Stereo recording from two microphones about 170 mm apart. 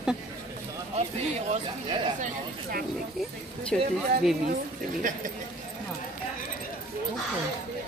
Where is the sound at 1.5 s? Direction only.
30° right (ahead or behind).